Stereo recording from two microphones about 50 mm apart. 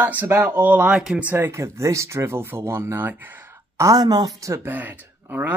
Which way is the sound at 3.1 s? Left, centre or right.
Right.